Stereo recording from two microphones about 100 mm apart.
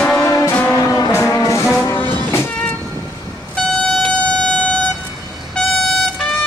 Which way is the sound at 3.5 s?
5° left (ahead or behind).